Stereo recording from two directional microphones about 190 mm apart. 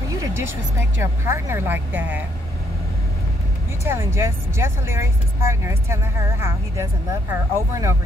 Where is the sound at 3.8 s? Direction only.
15° right (ahead or behind).